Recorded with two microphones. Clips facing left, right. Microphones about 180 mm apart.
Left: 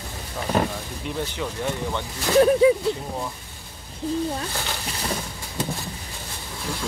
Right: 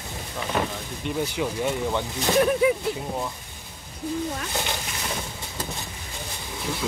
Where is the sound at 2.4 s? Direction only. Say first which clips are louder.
Left 5 dB; 30° left (ahead or behind).